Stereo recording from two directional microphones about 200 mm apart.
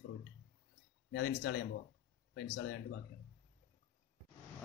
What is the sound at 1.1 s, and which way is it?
Speech, 65° left (ahead or behind).